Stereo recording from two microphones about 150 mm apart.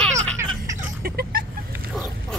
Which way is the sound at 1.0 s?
90° right.